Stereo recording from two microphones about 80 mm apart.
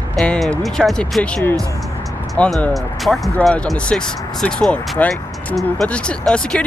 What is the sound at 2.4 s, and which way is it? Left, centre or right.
Speech, centre.